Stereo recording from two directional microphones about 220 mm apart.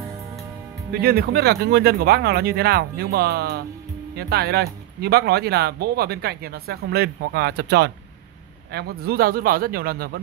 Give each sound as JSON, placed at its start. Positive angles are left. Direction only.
{"t": 1.0, "sound": "speech", "side_deg": -45}